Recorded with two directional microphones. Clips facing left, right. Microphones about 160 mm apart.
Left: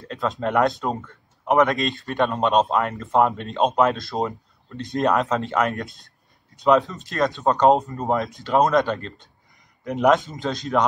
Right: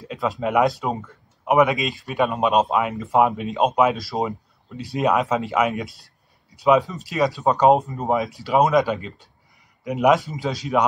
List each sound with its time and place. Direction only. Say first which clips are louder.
0.0 s speech: right 1 dB; 5° right (ahead or behind)